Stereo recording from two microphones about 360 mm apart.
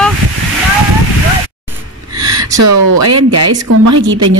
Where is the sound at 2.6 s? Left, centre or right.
Right.